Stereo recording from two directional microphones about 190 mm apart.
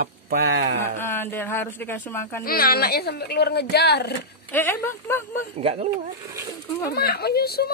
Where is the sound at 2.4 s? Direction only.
50° left (ahead or behind).